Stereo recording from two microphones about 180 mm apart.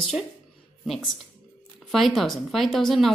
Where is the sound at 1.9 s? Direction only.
Centre (ahead or behind).